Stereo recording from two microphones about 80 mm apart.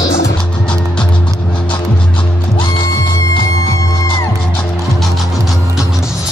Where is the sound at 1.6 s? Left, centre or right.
Left.